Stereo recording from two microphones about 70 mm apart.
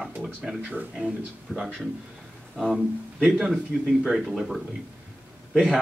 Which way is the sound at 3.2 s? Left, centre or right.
Centre.